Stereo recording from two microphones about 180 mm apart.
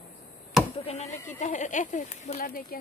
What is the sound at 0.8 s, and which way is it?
Speech, 35° left (ahead or behind).